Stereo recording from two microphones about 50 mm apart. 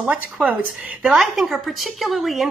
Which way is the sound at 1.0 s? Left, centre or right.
Centre.